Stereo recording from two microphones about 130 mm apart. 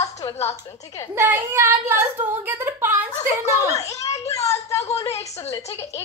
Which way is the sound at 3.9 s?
25° left (ahead or behind).